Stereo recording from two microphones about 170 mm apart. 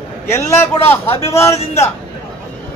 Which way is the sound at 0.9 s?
15° left (ahead or behind).